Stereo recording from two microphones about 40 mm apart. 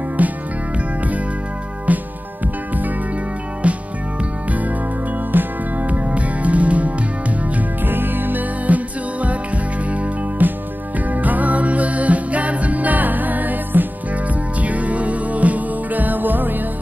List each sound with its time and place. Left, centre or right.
0.2 s music: right
1.9 s music: right
3.6 s music: right
5.3 s music: right
5.9 s music: right
7.8 s music: right
10.4 s music: right